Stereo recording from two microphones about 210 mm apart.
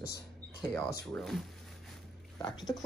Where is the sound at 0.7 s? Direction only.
5° left (ahead or behind).